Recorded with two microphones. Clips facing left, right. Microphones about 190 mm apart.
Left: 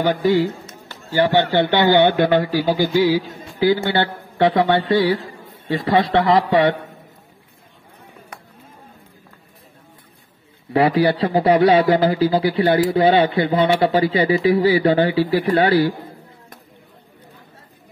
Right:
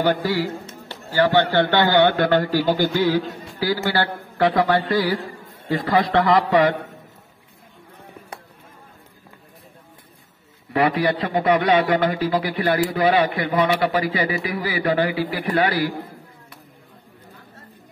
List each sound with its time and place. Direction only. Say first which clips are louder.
0.2 s a man's voice: left 6 dB; 20° left (ahead or behind)
2.5 s a sound: left 1 dB; 5° left (ahead or behind)
2.9 s a man's voice: left 3 dB; 10° left (ahead or behind)
3.5 s a man's voice: left 5 dB; 20° left (ahead or behind)
10.7 s a man's voice: left 4 dB; 30° left (ahead or behind)